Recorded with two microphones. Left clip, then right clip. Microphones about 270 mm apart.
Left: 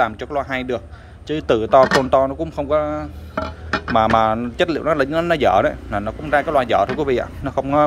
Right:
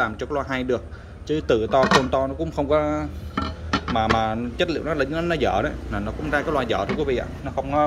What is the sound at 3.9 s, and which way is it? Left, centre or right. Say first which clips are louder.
Speech: left 7 dB; centre.